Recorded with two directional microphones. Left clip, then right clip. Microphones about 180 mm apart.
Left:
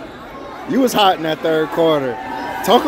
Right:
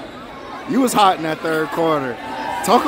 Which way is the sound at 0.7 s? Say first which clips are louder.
Left 1 dB; 15° right (ahead or behind).